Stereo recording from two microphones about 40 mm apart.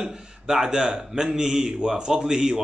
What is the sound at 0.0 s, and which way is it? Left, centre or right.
A man's voice, centre.